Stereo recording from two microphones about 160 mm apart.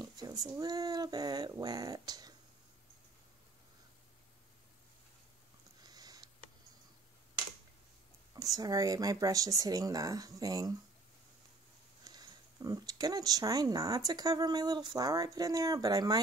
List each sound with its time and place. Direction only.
0.0 s speech: 25° right (ahead or behind)
5.8 s sniff: 25° right (ahead or behind)
8.5 s speech: 20° right (ahead or behind)
12.0 s speech: 25° right (ahead or behind)